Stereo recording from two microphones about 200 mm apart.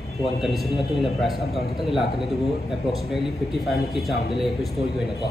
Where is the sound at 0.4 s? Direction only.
Centre (ahead or behind).